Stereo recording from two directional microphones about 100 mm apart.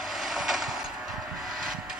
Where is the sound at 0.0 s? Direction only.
Centre (ahead or behind).